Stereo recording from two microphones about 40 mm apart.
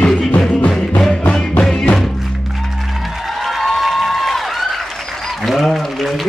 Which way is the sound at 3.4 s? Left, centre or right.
Centre.